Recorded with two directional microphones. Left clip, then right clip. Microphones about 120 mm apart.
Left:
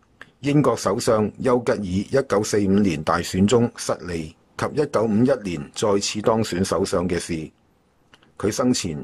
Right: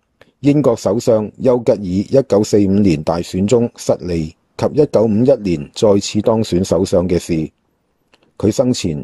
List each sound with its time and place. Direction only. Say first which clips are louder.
0.2 s speech: right 7 dB; 30° right (ahead or behind)